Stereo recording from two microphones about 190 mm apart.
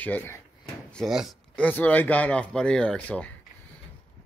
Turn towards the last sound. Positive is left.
turn(degrees=10)  # may be behind; listen again after turning